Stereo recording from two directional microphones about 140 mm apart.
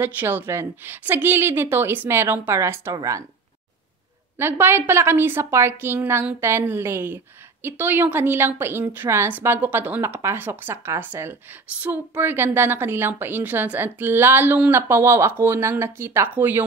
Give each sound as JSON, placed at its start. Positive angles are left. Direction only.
{"t": 0.0, "sound": "a woman's voice", "side_deg": -15}
{"t": 4.4, "sound": "a woman's voice", "side_deg": -15}